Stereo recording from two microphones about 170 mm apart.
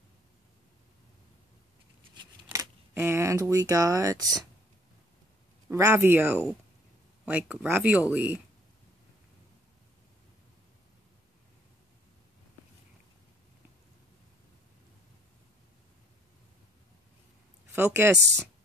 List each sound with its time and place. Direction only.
2.4 s speech: 15° right (ahead or behind)
5.7 s speech: 15° right (ahead or behind)
17.7 s speech: 15° right (ahead or behind)